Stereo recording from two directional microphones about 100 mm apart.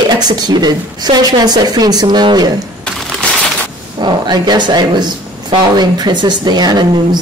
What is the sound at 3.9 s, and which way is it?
A woman's voice, 50° right (ahead or behind).